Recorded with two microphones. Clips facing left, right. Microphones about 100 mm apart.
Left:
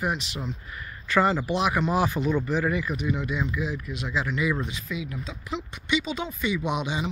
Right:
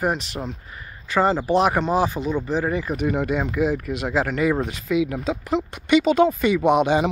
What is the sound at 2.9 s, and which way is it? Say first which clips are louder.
Speech: right 6 dB; 50° right (ahead or behind).